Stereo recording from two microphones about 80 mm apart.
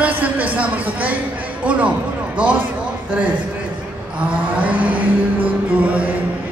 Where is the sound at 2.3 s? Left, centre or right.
Centre.